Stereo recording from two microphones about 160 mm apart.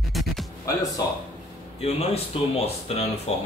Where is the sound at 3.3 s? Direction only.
45° left (ahead or behind).